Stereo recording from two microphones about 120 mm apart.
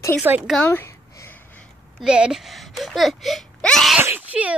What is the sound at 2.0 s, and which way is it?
Speech, 5° right (ahead or behind).